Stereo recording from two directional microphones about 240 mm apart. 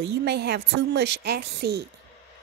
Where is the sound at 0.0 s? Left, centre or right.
Right.